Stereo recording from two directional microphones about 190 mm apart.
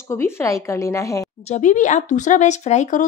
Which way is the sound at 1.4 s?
40° left (ahead or behind).